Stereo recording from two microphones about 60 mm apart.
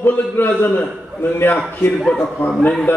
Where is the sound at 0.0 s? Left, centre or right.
Left.